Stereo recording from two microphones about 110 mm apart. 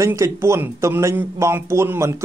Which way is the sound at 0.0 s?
30° right (ahead or behind).